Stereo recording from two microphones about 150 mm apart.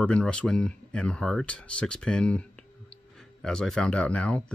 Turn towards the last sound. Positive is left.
turn(degrees=10)  # may be behind; listen again after turning